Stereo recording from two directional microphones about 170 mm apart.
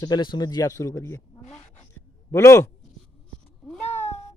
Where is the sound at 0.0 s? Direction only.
25° left (ahead or behind).